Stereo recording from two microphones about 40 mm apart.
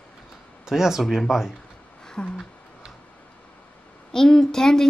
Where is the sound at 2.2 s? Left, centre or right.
Left.